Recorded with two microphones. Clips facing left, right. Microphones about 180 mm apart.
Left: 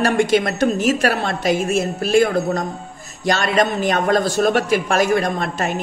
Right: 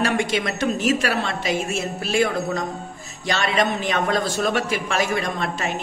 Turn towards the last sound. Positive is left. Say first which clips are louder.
# left 4 dB
turn(degrees=45)  # may be behind; listen again after turning